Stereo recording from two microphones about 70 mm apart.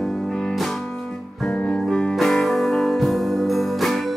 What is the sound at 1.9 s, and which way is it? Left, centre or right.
Music, centre.